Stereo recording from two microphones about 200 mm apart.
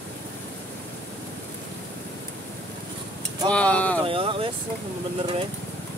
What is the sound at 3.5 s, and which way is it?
Vehicle, 5° left (ahead or behind).